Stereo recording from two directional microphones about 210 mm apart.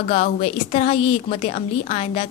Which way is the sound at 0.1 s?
30° left (ahead or behind).